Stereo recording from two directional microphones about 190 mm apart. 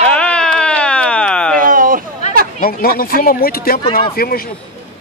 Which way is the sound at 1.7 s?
45° right (ahead or behind).